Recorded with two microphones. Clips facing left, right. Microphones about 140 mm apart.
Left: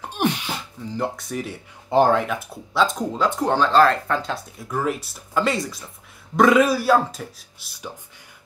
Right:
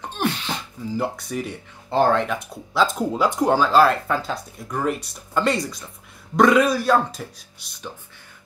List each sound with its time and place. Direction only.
0.1 s wail: 15° left (ahead or behind)
0.8 s speech: 5° right (ahead or behind)
1.9 s speech: 15° left (ahead or behind)
2.2 s speech: centre (ahead or behind)